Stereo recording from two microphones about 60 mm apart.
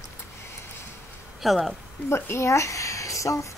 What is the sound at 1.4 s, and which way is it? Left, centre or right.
Speech, centre.